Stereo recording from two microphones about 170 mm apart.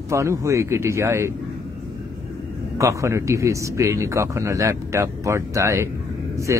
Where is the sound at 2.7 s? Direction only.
15° right (ahead or behind).